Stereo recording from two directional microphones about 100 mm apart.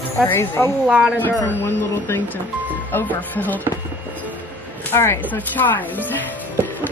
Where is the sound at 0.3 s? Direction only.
20° left (ahead or behind).